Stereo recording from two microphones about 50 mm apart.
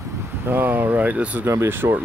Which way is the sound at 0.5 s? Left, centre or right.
Right.